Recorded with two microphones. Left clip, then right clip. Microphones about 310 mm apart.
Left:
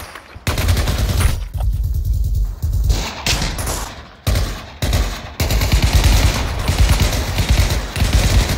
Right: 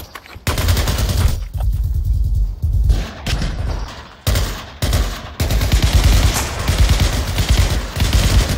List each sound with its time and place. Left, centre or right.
0.5 s gunshot: centre
2.9 s a sound: centre
4.2 s machine gun: centre